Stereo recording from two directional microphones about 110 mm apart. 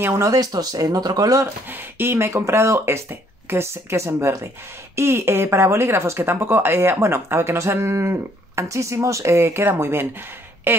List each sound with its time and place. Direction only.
0.0 s speech: 25° right (ahead or behind)
1.7 s speech: 20° right (ahead or behind)